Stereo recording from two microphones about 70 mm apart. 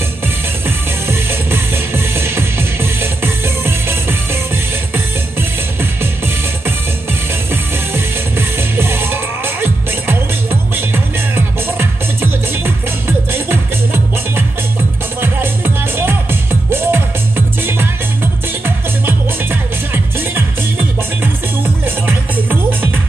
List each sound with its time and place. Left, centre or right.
0.7 s music: right
7.9 s music: right
19.0 s music: right
21.8 s music: right